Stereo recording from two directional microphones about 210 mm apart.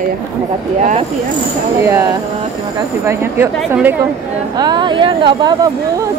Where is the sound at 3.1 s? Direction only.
10° right (ahead or behind).